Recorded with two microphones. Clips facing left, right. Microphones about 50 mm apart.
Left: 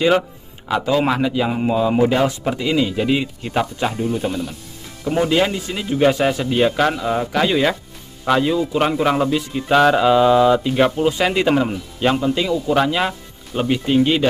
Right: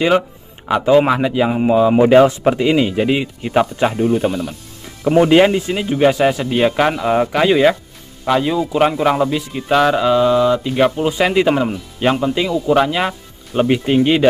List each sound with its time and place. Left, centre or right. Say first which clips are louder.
0.7 s speech: right 5 dB; centre
2.0 s speech: right 7 dB; right; by 4.6 s centre
5.2 s speech: right 6 dB; right
6.0 s speech: right 2 dB; centre
7.4 s speech: right 5 dB; centre